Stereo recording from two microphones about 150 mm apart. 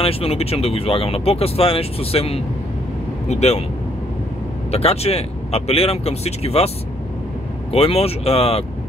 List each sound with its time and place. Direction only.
0.0 s speech: 40° left (ahead or behind)
4.6 s speech: 45° left (ahead or behind)
7.7 s speech: 40° left (ahead or behind)